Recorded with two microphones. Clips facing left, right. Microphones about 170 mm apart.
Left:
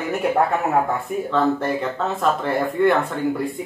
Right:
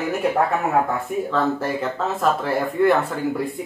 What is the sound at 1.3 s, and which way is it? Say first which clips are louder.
Speech: left 3 dB; centre (ahead or behind).